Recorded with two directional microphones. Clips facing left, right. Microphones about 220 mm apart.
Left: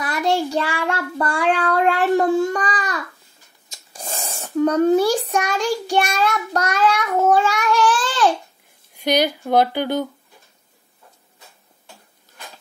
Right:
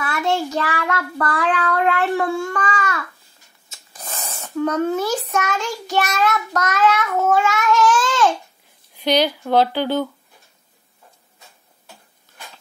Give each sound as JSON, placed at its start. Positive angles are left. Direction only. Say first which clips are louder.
{"t": 0.0, "sound": "child singing", "louder": "left 1 dB", "side_deg": 35}
{"t": 2.5, "sound": "babbling", "louder": "even", "side_deg": 35}
{"t": 3.9, "sound": "a sound", "louder": "left 2 dB", "side_deg": 30}
{"t": 8.9, "sound": "speech", "louder": "right 1 dB", "side_deg": 10}